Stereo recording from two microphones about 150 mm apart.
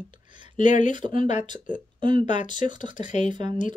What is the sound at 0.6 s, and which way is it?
Speech, 55° left (ahead or behind).